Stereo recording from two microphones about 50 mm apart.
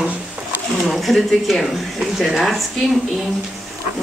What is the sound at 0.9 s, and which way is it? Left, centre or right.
Speech, centre.